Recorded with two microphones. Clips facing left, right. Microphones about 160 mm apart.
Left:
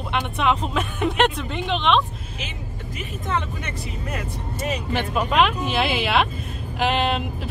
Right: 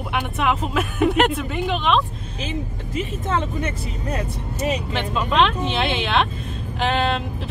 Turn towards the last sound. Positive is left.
turn(degrees=5)  # may be behind; listen again after turning